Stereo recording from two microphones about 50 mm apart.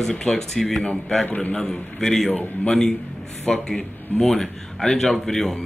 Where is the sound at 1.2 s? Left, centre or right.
Left.